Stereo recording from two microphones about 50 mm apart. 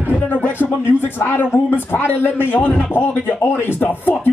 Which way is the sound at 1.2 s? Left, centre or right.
Left.